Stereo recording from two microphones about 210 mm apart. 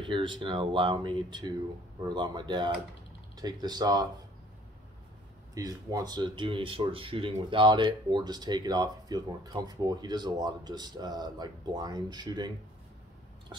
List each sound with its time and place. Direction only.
0.0 s speech: 25° right (ahead or behind)
5.5 s speech: 15° right (ahead or behind)